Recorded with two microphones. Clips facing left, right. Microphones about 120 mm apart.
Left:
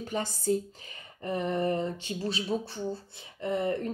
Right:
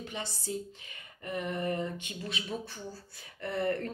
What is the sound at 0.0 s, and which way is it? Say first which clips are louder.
Speech: left 8 dB; 45° left (ahead or behind).